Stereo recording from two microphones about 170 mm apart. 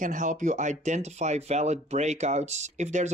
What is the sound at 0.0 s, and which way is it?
Speech, 50° right (ahead or behind).